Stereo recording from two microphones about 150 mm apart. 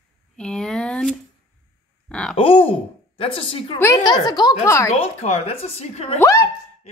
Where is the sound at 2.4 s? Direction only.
35° left (ahead or behind).